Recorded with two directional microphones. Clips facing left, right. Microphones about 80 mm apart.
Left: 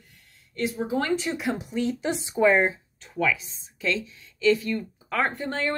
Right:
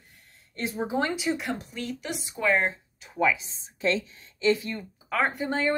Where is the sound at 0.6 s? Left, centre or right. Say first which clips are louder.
Left 1 dB; right.